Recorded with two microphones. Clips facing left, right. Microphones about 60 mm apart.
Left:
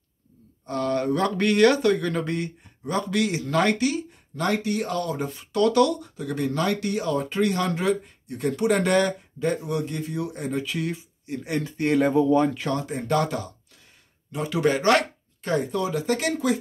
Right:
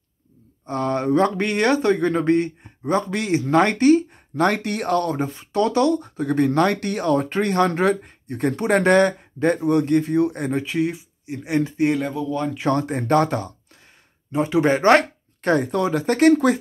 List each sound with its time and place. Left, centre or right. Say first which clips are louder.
0.7 s speech: right 3 dB; right
5.3 s speech: left 2 dB; right
10.5 s speech: right 5 dB; right
12.1 s speech: left 6 dB; left
12.6 s speech: right 6 dB; right
14.3 s speech: right 5 dB; right
15.4 s speech: right 5 dB; right